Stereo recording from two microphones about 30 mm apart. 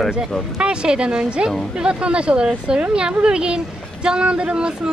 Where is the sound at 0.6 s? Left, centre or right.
Right.